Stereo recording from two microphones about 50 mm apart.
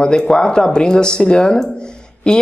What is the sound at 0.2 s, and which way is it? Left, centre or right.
A man's voice, centre.